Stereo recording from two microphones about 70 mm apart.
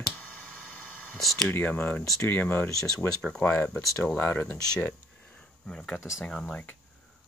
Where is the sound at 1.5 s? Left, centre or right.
Left.